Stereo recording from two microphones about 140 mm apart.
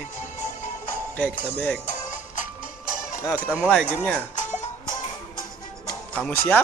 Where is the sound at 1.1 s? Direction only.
10° left (ahead or behind).